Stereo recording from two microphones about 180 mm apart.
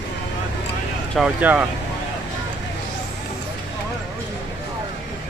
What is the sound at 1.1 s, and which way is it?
Speech, 5° right (ahead or behind).